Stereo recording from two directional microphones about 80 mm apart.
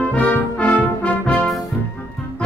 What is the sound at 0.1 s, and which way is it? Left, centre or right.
Brass instrument, centre.